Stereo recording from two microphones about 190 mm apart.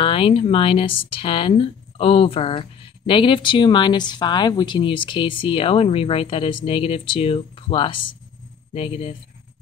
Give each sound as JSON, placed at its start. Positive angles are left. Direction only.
{"t": 0.0, "sound": "speech", "side_deg": 30}